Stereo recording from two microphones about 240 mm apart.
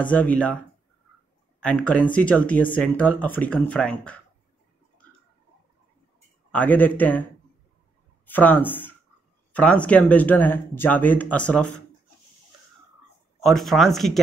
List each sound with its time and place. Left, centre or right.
0.0 s speech: centre
1.6 s speech: centre
6.5 s speech: centre
8.3 s speech: centre
13.4 s speech: centre